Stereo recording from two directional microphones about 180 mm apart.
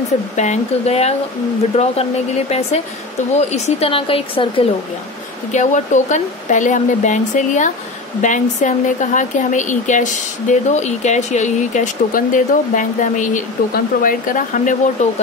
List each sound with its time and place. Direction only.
0.4 s speech: 40° left (ahead or behind)
5.5 s speech: 40° left (ahead or behind)